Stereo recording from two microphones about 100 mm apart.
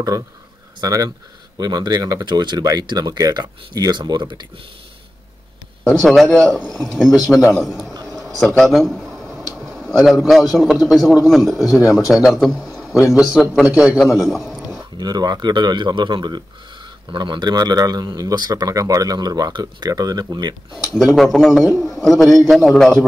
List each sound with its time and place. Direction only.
0.7 s speech: 35° right (ahead or behind)
5.9 s a man's voice: centre (ahead or behind)
7.9 s a sound: 35° right (ahead or behind)
8.2 s a man's voice: centre (ahead or behind)
15.0 s speech: 40° right (ahead or behind)
20.7 s a man's voice: 5° right (ahead or behind)